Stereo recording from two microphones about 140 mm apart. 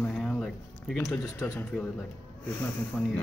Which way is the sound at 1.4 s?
10° left (ahead or behind).